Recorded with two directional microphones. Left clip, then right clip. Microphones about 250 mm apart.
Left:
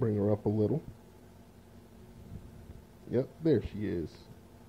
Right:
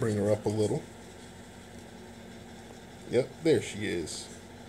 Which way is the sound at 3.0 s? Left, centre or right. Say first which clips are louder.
Right 4 dB; centre.